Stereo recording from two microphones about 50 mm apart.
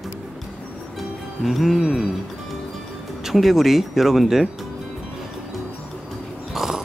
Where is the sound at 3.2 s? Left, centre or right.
Centre.